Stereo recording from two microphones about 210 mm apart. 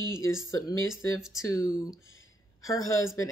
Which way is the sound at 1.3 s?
15° left (ahead or behind).